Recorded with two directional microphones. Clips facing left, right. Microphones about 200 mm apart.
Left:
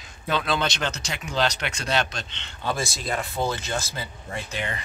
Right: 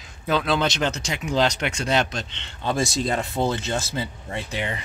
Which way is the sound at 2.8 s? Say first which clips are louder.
Right 5 dB; 20° right (ahead or behind).